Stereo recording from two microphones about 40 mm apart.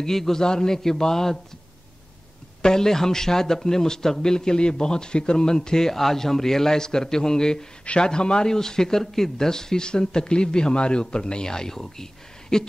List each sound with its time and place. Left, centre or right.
0.0 s a man's voice: centre
2.6 s a man's voice: centre